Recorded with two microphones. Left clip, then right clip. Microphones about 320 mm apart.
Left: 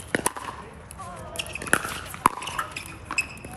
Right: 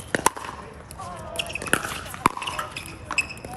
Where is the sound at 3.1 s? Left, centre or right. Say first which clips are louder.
Right 2 dB; right.